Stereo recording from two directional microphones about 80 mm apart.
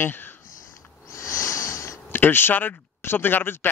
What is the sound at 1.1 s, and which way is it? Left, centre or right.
Sniff, left.